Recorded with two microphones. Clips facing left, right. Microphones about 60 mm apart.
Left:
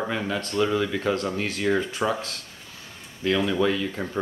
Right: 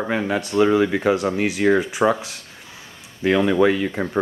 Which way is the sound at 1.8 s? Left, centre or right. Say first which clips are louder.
Right 6 dB; centre.